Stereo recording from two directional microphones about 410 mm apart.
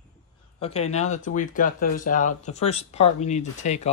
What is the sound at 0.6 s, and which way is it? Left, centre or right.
Speech, centre.